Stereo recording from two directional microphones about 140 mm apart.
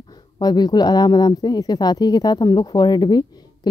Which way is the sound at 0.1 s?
30° left (ahead or behind).